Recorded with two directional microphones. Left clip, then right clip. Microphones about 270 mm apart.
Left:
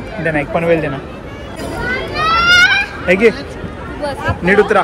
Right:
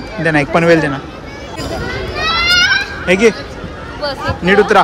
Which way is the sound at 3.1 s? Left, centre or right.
Centre.